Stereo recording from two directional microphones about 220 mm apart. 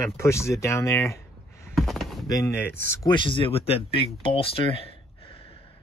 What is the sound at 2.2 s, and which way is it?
Speech, 15° left (ahead or behind).